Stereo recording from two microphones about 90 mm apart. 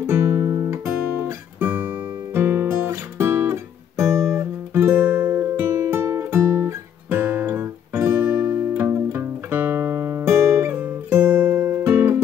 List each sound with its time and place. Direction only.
0.0 s guitar: 35° right (ahead or behind)
2.3 s music: 25° right (ahead or behind)
4.0 s guitar: 35° right (ahead or behind)
4.7 s music: 20° right (ahead or behind)
10.8 s music: 20° right (ahead or behind)